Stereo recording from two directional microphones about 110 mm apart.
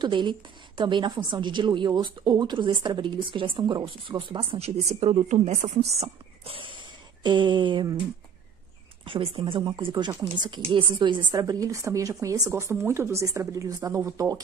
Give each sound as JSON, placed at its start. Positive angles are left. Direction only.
{"t": 0.0, "sound": "a woman's voice", "side_deg": -45}
{"t": 9.0, "sound": "a woman's voice", "side_deg": -55}
{"t": 11.3, "sound": "a woman's voice", "side_deg": -30}